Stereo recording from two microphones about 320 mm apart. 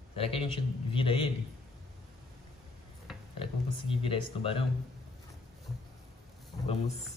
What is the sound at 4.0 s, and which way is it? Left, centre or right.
Speech, centre.